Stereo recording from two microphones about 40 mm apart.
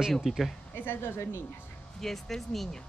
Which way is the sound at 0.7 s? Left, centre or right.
Left.